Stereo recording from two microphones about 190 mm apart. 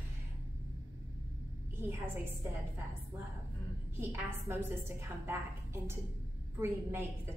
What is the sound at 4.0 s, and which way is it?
Speech, 10° right (ahead or behind).